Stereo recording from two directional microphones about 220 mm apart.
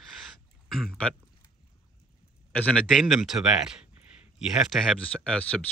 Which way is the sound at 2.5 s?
5° left (ahead or behind).